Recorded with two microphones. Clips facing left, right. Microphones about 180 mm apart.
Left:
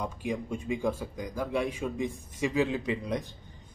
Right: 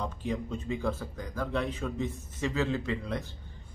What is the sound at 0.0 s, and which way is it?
A man's voice, 10° left (ahead or behind).